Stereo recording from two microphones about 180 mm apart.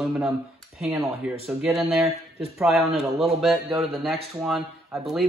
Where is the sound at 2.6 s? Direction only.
Centre (ahead or behind).